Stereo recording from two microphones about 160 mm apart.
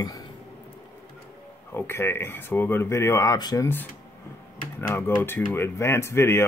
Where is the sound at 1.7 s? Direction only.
15° left (ahead or behind).